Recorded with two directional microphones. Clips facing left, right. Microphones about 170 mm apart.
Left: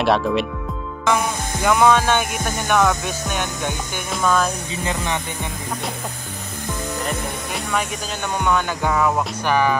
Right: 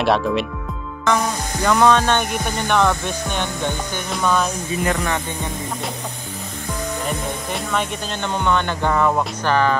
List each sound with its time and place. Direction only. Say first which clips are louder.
0.0 s music: even; centre (ahead or behind)
7.1 s music: right 1 dB; centre (ahead or behind)